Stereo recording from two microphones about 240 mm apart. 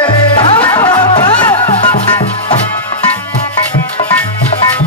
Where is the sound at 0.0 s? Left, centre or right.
Centre.